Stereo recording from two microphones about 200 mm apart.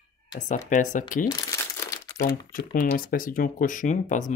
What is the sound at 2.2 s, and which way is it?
Speech, 45° left (ahead or behind).